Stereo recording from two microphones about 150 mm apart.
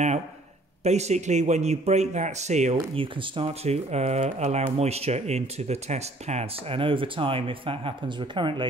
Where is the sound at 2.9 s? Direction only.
35° right (ahead or behind).